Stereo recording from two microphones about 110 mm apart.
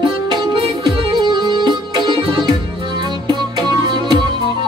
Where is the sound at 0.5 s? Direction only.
45° right (ahead or behind).